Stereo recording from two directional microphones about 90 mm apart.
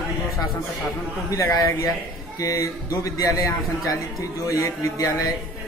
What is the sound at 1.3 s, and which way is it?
A man's voice, 40° left (ahead or behind).